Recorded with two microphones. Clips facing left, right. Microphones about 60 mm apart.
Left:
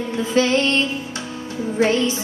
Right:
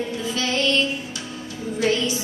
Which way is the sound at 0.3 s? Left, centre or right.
Left.